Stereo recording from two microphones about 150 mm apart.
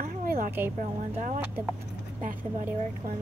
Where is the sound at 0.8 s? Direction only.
55° right (ahead or behind).